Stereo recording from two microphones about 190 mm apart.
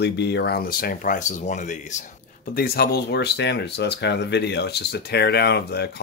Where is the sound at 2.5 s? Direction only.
55° left (ahead or behind).